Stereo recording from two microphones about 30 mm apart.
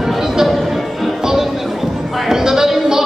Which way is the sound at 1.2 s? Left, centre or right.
Centre.